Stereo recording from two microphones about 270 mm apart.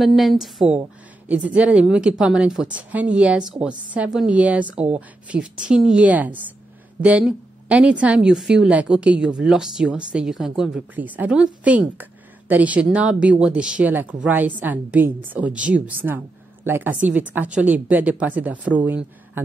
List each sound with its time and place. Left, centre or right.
0.0 s a woman's voice: centre